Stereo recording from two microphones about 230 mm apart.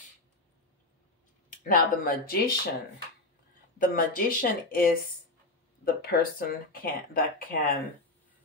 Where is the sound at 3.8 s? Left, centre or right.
Left.